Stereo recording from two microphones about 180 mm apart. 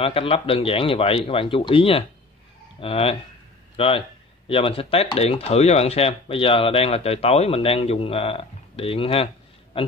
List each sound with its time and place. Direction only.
0.0 s a man's voice: 30° left (ahead or behind)